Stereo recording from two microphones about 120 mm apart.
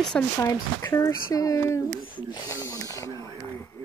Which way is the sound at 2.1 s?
35° left (ahead or behind).